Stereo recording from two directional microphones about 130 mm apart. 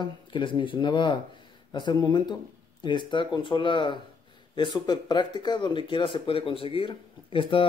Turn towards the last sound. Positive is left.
turn(degrees=40)  # may be behind; listen again after turning